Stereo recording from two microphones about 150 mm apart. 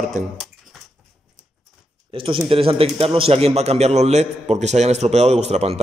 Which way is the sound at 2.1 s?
35° right (ahead or behind).